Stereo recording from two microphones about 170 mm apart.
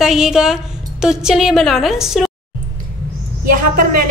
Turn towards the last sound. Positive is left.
turn(degrees=-55)  # may be behind; listen again after turning